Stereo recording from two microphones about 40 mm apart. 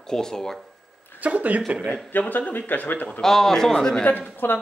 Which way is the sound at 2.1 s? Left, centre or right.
Left.